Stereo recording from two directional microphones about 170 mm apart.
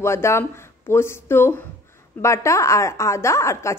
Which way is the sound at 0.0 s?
15° left (ahead or behind).